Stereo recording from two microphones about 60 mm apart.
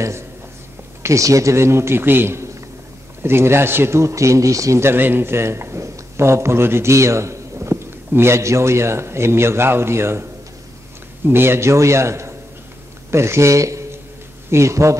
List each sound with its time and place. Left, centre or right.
1.0 s a man's voice: right
4.8 s a man's voice: right
11.2 s a man's voice: right